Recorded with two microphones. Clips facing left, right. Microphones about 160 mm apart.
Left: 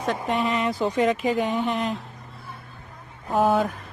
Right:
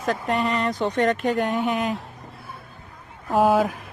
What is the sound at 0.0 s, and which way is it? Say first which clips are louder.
Speech: right 1 dB; centre (ahead or behind).